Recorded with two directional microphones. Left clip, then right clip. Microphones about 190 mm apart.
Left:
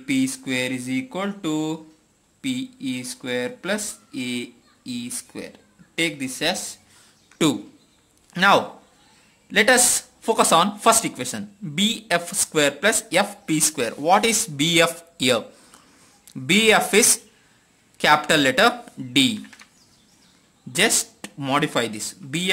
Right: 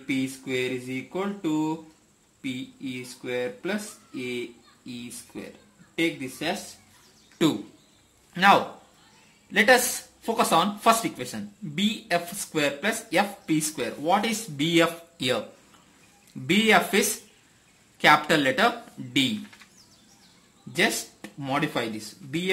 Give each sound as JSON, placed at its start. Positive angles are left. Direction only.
{"t": 0.0, "sound": "speech", "side_deg": 50}
{"t": 7.4, "sound": "a man's voice", "side_deg": 30}
{"t": 16.4, "sound": "speech", "side_deg": 35}
{"t": 20.7, "sound": "speech", "side_deg": 40}